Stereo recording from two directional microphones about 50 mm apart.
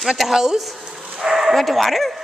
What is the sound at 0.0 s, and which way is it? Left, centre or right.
Speech, centre.